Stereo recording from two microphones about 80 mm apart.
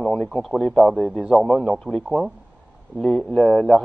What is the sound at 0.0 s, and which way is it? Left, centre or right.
Speech, centre.